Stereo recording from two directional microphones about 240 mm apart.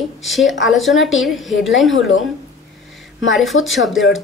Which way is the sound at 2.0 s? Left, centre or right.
Left.